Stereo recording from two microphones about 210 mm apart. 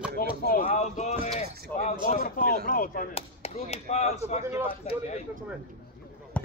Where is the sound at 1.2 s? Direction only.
30° left (ahead or behind).